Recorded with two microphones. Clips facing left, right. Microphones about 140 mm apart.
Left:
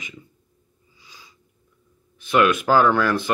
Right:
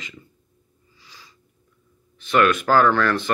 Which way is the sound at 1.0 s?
15° left (ahead or behind).